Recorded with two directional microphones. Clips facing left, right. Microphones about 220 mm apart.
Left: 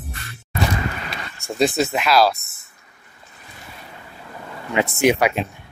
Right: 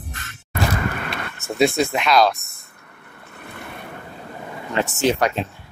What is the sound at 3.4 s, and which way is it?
Waves, 60° right (ahead or behind).